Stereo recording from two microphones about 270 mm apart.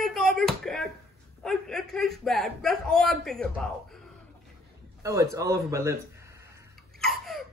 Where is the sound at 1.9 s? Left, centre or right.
Centre.